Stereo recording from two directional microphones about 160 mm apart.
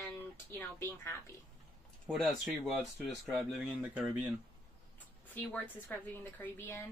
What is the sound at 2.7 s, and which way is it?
Speech, centre (ahead or behind).